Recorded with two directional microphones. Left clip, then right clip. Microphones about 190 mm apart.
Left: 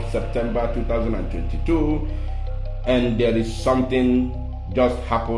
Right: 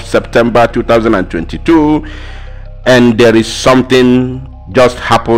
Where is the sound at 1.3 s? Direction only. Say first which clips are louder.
Right 15 dB; 55° right (ahead or behind).